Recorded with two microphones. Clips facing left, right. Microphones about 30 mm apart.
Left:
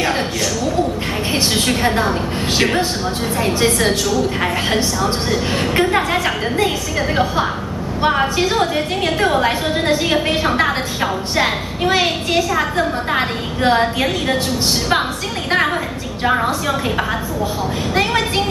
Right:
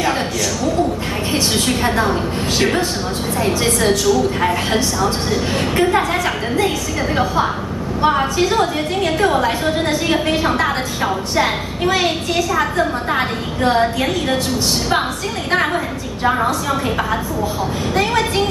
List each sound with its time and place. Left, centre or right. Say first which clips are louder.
1.8 s a woman's voice: even; centre
3.3 s a woman's voice: left 1 dB; centre
5.0 s a woman's voice: even; centre
8.0 s a woman's voice: even; centre
10.1 s a woman's voice: even; centre
13.7 s a woman's voice: left 1 dB; centre
17.9 s a woman's voice: even; left